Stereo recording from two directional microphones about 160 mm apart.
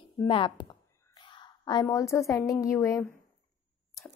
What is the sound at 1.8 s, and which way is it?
A woman's voice, 20° left (ahead or behind).